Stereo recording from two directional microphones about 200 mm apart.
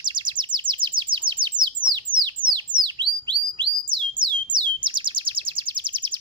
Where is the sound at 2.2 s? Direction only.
25° right (ahead or behind).